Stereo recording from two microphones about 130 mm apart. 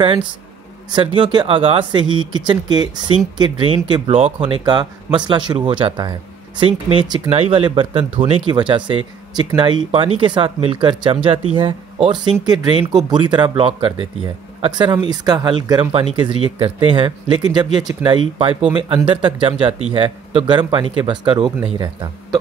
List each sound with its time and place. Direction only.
0.9 s speech: 40° right (ahead or behind)
7.2 s speech: 50° right (ahead or behind); by 22.4 s 30° right (ahead or behind)